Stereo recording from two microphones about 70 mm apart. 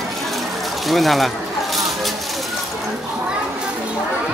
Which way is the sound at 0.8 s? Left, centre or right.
Centre.